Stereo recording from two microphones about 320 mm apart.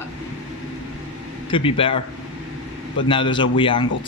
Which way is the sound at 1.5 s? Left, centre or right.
Centre.